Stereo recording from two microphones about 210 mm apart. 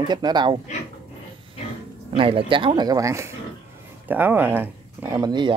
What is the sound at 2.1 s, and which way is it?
Speech, 25° right (ahead or behind).